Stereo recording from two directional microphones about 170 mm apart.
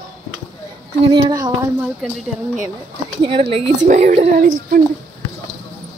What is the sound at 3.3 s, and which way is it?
A woman's voice, 35° right (ahead or behind).